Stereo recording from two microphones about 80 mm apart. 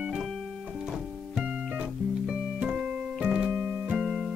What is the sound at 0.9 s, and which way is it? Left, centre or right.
Music, centre.